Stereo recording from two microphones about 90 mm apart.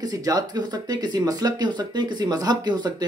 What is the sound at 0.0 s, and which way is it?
Speech, 45° right (ahead or behind).